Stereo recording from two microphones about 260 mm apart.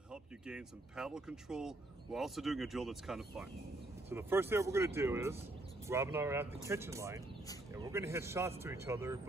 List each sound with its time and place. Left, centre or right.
0.1 s a man's voice: centre